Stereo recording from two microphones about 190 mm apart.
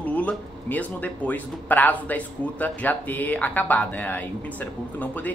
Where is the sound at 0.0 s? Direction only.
5° left (ahead or behind).